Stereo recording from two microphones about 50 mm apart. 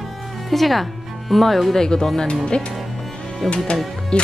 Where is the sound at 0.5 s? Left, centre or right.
Centre.